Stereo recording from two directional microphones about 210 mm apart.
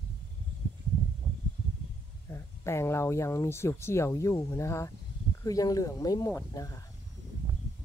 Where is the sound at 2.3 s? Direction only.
10° left (ahead or behind).